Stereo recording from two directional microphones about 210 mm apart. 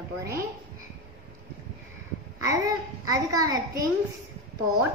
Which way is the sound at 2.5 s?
15° right (ahead or behind).